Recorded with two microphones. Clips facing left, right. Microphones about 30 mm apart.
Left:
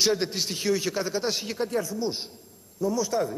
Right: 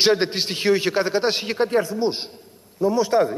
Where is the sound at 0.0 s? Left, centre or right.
Right.